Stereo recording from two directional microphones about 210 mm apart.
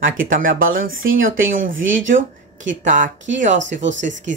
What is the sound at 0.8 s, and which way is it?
Speech, 70° right (ahead or behind).